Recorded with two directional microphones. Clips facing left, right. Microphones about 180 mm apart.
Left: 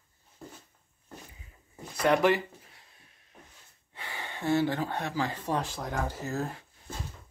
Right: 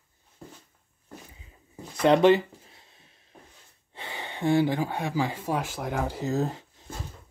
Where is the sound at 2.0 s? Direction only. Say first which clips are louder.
Right 5 dB; 25° right (ahead or behind).